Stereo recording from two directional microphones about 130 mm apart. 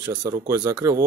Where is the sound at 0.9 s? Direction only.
25° right (ahead or behind).